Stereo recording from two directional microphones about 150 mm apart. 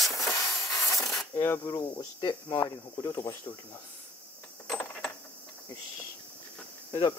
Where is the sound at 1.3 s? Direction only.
20° left (ahead or behind).